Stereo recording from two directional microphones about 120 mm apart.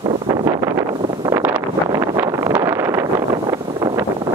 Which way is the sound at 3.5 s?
30° right (ahead or behind).